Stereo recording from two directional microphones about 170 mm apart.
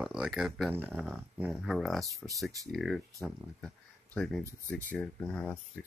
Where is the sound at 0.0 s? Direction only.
Centre (ahead or behind).